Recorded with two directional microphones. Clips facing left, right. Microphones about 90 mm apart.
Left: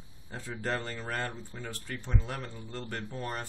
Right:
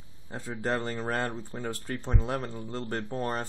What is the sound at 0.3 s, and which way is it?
Speech, 25° right (ahead or behind).